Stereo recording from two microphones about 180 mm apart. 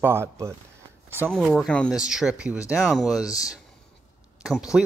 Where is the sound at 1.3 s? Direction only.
Centre (ahead or behind).